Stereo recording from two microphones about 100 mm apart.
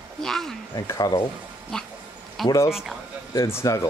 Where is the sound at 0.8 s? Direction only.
40° left (ahead or behind).